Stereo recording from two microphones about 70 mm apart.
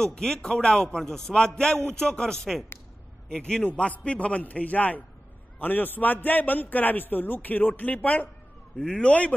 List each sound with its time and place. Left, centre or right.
0.0 s a man's voice: centre